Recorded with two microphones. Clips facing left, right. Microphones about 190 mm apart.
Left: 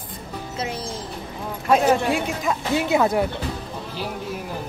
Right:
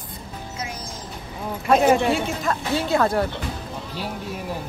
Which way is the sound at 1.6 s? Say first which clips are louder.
Right 1 dB; centre (ahead or behind).